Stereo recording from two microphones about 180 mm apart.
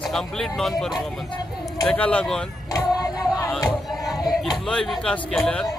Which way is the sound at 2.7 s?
20° left (ahead or behind).